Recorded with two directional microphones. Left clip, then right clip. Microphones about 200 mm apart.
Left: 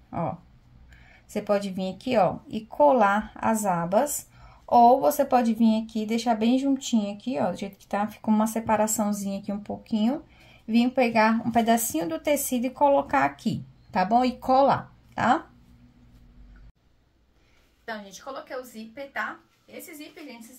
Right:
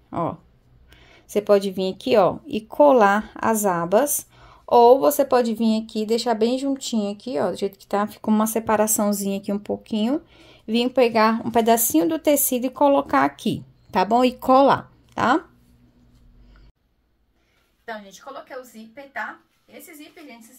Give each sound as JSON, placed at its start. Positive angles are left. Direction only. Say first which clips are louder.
{"t": 0.1, "sound": "a sound", "louder": "right 5 dB", "side_deg": -50}
{"t": 1.0, "sound": "speech", "louder": "right 7 dB", "side_deg": -50}
{"t": 17.8, "sound": "a woman's voice", "louder": "right 1 dB", "side_deg": 0}